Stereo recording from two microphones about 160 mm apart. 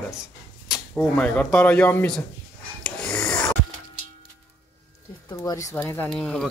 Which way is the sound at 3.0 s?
5° left (ahead or behind).